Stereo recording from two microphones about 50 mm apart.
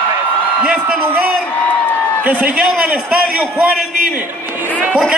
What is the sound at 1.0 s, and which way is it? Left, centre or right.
A man's voice, right.